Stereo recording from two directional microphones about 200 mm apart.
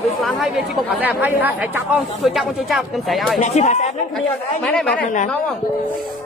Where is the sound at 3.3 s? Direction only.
35° left (ahead or behind).